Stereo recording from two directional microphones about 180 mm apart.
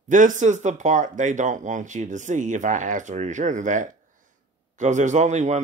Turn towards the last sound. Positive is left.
turn(degrees=-40)  # may be behind; listen again after turning